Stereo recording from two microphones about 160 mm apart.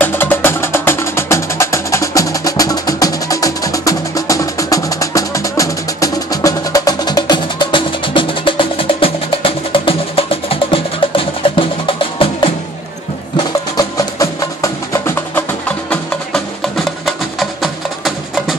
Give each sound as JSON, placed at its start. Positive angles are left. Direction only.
{"t": 0.0, "sound": "music", "side_deg": 10}
{"t": 13.4, "sound": "music", "side_deg": 20}
{"t": 16.7, "sound": "music", "side_deg": 0}